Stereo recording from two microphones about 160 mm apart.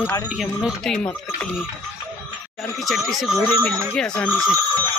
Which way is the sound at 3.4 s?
10° left (ahead or behind).